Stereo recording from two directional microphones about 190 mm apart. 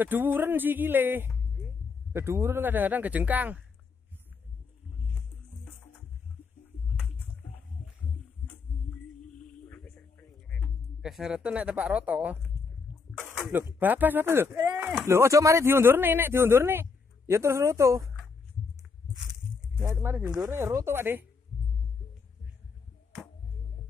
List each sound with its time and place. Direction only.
0.0 s speech: 10° right (ahead or behind)
9.5 s music: 5° left (ahead or behind)
13.4 s speech: 10° right (ahead or behind)
19.8 s speech: 15° right (ahead or behind)